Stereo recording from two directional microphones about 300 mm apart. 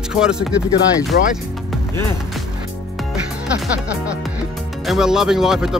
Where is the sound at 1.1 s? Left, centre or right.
Left.